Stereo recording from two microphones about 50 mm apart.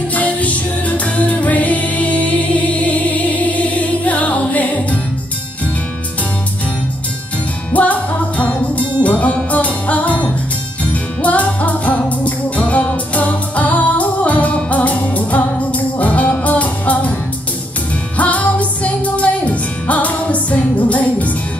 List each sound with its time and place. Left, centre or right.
0.1 s music: left
7.7 s music: left
18.1 s music: left